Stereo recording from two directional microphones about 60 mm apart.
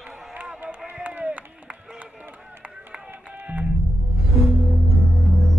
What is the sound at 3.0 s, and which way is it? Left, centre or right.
Music, right.